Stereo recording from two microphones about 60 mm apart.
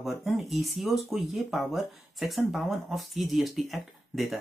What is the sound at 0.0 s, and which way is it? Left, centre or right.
A woman's voice, centre.